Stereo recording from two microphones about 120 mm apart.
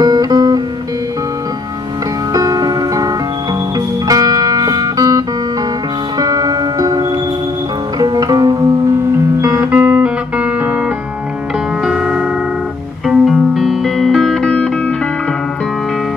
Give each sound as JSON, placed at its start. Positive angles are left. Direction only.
{"t": 0.0, "sound": "music", "side_deg": -35}
{"t": 2.3, "sound": "music", "side_deg": -30}
{"t": 11.8, "sound": "music", "side_deg": -5}